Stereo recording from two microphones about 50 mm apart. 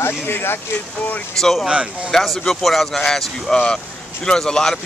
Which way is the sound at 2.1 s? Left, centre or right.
Centre.